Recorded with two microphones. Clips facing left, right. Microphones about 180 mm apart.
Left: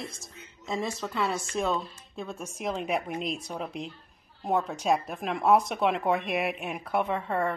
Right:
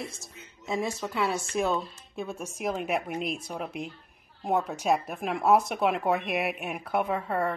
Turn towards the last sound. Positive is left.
turn(degrees=-5)  # may be behind; listen again after turning